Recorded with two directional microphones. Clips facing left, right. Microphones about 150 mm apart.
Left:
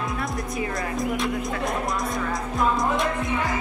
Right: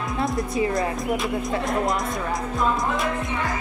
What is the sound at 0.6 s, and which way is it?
Speech, 25° right (ahead or behind).